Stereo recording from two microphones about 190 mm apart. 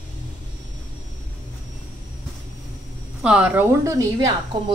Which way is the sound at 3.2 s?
5° right (ahead or behind).